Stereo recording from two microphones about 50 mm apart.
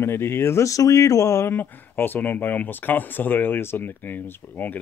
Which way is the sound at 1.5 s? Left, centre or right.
Left.